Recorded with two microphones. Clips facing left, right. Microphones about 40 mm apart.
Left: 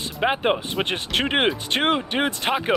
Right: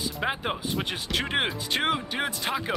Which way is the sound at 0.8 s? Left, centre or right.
Left.